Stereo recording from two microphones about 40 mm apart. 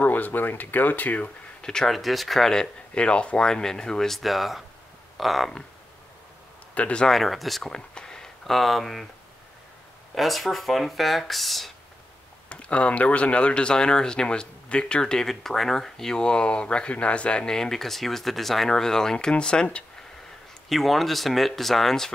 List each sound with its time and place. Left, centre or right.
0.0 s speech: left
1.6 s speech: centre
1.9 s speech: centre
2.5 s speech: left
3.4 s speech: centre
4.1 s speech: centre
6.7 s a sound: left
7.1 s speech: centre
7.7 s a sound: centre
8.5 s speech: centre
10.1 s speech: centre
12.4 s speech: left
17.6 s speech: centre
20.6 s speech: centre